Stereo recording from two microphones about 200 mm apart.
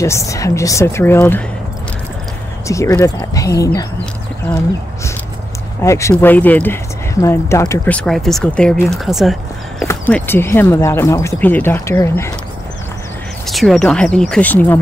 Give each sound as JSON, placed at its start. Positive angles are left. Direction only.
{"t": 0.0, "sound": "speech", "side_deg": 15}
{"t": 2.7, "sound": "speech", "side_deg": 15}
{"t": 4.0, "sound": "speech", "side_deg": 5}
{"t": 13.5, "sound": "speech", "side_deg": 0}